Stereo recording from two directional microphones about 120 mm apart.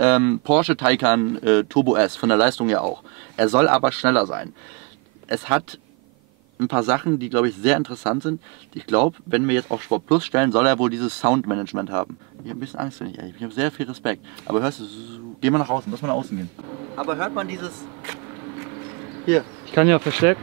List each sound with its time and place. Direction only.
0.0 s speech: 10° right (ahead or behind)
6.7 s speech: 20° right (ahead or behind)
19.2 s speech: 15° right (ahead or behind)